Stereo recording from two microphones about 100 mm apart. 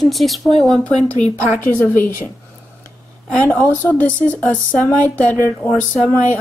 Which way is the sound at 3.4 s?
20° left (ahead or behind).